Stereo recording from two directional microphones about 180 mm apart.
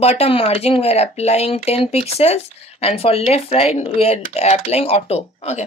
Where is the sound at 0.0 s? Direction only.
35° left (ahead or behind).